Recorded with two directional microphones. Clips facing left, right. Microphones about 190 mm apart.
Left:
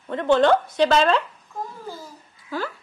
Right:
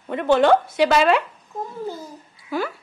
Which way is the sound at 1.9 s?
15° right (ahead or behind).